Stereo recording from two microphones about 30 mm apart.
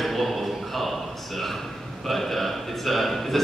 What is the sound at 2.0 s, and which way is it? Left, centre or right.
A man's voice, centre.